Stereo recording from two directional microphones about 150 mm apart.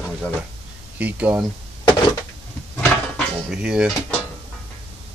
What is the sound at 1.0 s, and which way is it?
Speech, 10° right (ahead or behind).